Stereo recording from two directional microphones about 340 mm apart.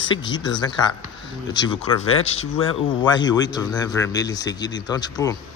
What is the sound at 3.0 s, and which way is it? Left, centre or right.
A man's voice, centre.